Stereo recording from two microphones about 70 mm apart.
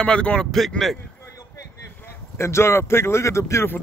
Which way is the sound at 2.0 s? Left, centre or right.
Left.